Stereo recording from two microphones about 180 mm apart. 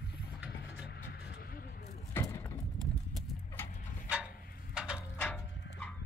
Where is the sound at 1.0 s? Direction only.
60° left (ahead or behind).